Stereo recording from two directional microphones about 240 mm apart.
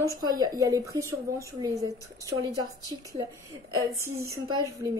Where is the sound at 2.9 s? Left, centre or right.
Centre.